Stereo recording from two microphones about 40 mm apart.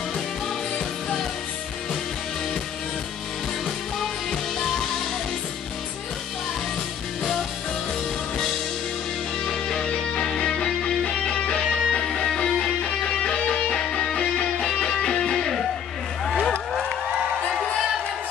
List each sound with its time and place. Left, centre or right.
4.3 s music: centre
9.4 s music: centre